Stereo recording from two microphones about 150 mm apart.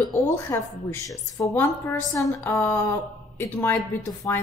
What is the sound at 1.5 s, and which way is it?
A woman's voice, 10° left (ahead or behind).